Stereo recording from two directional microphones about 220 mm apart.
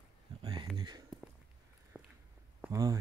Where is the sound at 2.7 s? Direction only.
15° right (ahead or behind).